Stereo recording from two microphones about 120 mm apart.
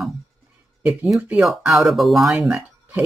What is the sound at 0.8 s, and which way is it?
Speech, centre (ahead or behind).